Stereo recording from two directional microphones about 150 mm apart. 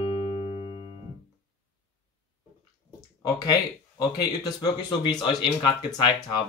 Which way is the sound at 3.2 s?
25° left (ahead or behind).